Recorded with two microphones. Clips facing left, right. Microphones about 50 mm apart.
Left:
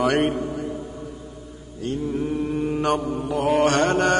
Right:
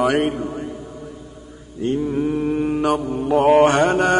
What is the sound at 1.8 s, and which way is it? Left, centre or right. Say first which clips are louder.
Mantra: right 5 dB; right.